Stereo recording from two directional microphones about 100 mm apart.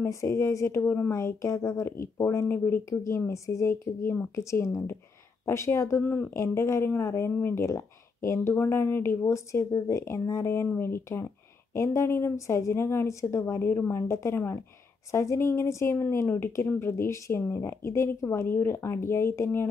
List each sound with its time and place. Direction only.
0.0 s a woman's voice: 30° left (ahead or behind)
4.4 s a woman's voice: 30° left (ahead or behind)